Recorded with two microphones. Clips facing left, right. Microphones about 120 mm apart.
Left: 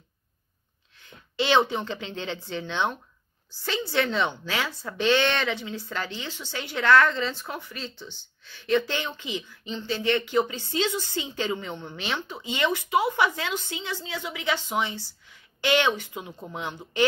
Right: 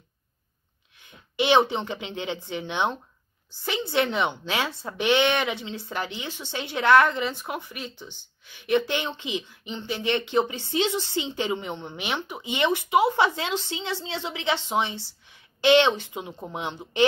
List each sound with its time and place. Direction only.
0.9 s a woman's voice: 20° right (ahead or behind)